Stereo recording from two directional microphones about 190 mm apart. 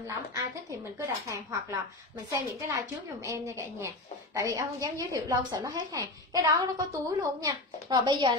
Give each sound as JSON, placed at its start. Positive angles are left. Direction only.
{"t": 0.3, "sound": "a woman's voice", "side_deg": -15}